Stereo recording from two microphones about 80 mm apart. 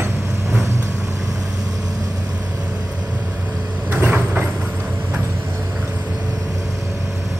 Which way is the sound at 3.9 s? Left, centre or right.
Right.